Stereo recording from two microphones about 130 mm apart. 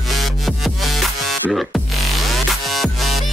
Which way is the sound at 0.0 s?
Centre (ahead or behind).